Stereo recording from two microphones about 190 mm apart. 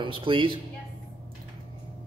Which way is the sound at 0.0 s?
25° right (ahead or behind).